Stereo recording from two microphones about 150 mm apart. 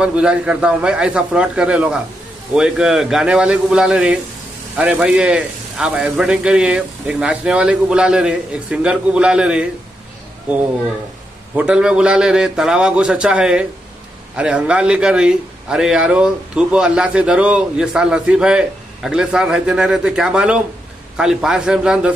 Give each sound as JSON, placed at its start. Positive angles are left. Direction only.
{"t": 0.0, "sound": "a man's voice", "side_deg": -5}
{"t": 11.5, "sound": "a man's voice", "side_deg": -5}